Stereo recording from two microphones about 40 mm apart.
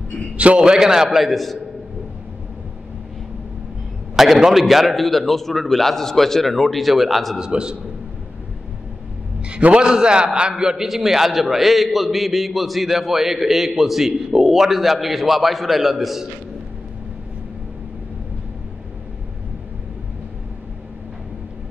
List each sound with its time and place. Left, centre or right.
0.6 s a man's voice: centre
1.1 s a man's voice: centre
4.2 s a man's voice: centre
7.3 s a man's voice: centre
9.4 s a sound: right
9.8 s a man's voice: right; by 16.3 s centre